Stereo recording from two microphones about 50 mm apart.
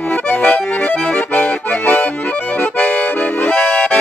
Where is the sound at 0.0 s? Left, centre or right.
Left.